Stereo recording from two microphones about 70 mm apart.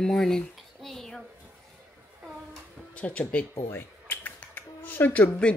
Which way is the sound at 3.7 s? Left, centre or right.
Left.